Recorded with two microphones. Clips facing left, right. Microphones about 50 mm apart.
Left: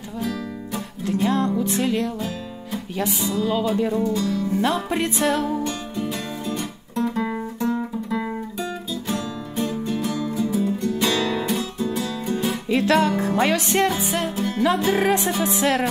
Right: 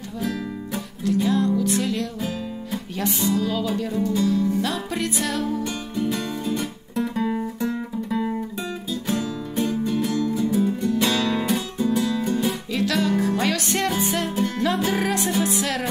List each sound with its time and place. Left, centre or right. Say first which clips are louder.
1.0 s music: right 1 dB; left
3.1 s music: right 7 dB; centre
3.3 s music: left 3 dB; centre
4.1 s music: right 2 dB; centre
4.6 s music: left 3 dB; left
5.9 s music: right 2 dB; centre
9.0 s music: right 3 dB; centre
12.6 s music: left 4 dB; left
13.2 s music: left 2 dB; left
13.8 s music: left 1 dB; centre
15.0 s music: left 2 dB; left